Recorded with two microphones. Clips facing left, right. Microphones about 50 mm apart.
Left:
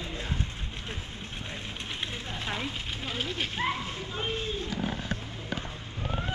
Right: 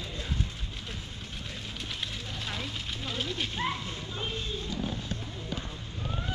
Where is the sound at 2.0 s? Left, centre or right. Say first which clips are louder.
Left 4 dB; left.